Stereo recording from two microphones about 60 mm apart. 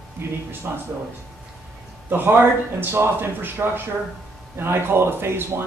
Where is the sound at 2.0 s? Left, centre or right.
Right.